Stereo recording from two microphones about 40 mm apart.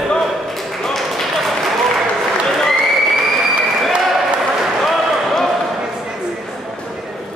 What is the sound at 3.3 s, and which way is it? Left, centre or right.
Applause, centre.